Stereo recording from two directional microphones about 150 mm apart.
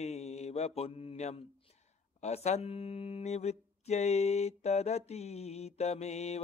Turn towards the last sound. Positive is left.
turn(degrees=45)  # may be behind; listen again after turning